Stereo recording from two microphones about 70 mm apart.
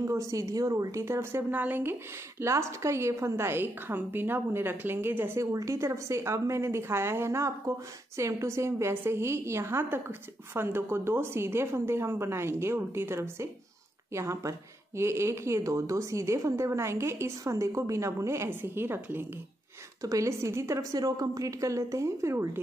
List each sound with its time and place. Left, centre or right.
0.0 s a woman's voice: right
1.5 s speech: right
2.4 s a woman's voice: right
5.4 s a woman's voice: right
18.5 s a woman's voice: right
20.0 s a woman's voice: right
21.0 s a woman's voice: right